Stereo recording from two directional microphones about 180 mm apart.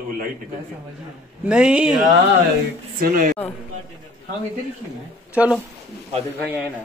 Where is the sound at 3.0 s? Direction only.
55° right (ahead or behind).